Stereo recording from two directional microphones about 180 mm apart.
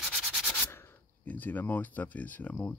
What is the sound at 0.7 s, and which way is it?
Speech, 15° left (ahead or behind).